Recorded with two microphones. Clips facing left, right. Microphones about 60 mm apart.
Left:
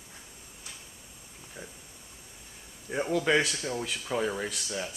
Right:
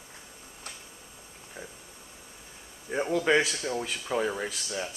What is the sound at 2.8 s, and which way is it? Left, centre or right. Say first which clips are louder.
Speech: right 1 dB; centre.